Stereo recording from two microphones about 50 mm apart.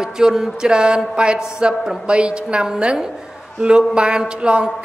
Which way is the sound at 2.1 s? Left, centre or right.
Right.